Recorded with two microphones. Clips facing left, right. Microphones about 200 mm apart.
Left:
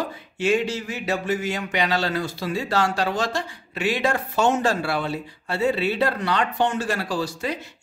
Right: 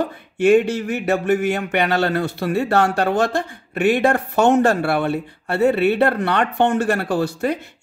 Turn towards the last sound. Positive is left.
turn(degrees=-55)  # may be behind; listen again after turning